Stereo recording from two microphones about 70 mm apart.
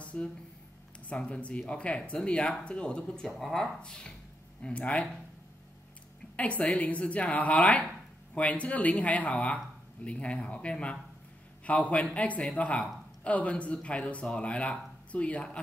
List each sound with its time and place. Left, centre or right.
0.0 s a sound: centre
1.1 s speech: centre
3.3 s speech: centre
6.3 s a woman's voice: centre